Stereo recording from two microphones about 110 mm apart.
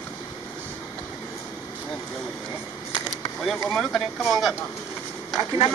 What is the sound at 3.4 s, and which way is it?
Speech, 5° left (ahead or behind).